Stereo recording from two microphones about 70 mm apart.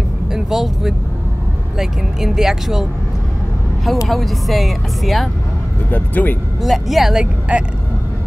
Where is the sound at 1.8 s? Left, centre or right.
Centre.